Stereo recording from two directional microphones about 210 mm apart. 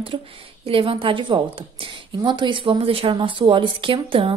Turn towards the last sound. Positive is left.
turn(degrees=-25)  # may be behind; listen again after turning